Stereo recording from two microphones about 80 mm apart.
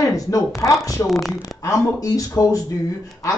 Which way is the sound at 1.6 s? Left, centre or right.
Left.